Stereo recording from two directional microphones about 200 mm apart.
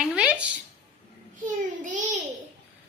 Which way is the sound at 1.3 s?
40° right (ahead or behind).